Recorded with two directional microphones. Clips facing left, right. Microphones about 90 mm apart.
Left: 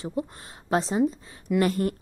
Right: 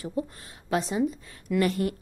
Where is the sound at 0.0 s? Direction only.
25° left (ahead or behind).